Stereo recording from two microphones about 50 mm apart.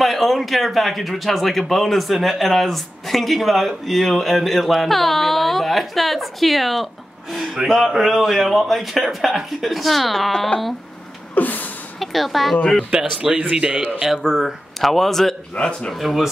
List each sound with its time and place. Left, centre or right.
0.0 s speech: centre
11.3 s a sound: left
12.0 s speech: centre
12.9 s speech: centre
15.5 s speech: left
15.9 s speech: centre